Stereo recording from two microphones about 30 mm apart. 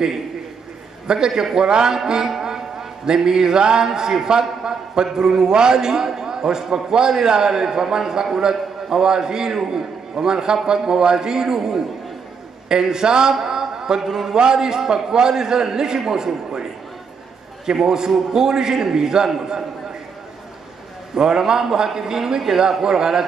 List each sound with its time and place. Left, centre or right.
1.0 s a man's voice: right
3.2 s a man's voice: centre
14.0 s a man's voice: centre
14.3 s a man's voice: right
17.6 s a man's voice: right
21.1 s a man's voice: centre